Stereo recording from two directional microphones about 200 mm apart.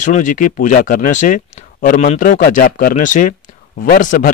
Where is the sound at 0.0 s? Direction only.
40° left (ahead or behind).